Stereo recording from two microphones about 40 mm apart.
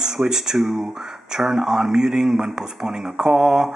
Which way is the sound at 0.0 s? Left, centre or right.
Centre.